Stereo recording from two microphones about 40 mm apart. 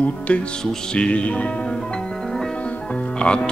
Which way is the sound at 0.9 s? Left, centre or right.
Left.